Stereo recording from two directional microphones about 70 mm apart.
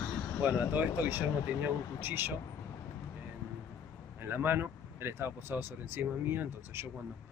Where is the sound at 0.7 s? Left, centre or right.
Right.